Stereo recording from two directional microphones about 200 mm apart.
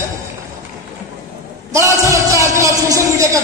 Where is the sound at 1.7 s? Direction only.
15° right (ahead or behind).